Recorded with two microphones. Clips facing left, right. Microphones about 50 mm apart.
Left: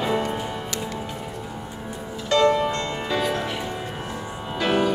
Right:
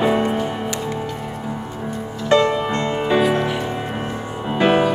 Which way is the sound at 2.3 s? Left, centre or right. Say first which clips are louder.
Right 2 dB; right.